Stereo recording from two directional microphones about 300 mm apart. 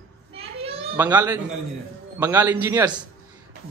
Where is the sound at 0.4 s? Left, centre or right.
Centre.